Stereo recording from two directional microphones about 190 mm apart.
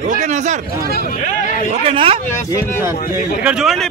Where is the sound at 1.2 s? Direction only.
40° left (ahead or behind).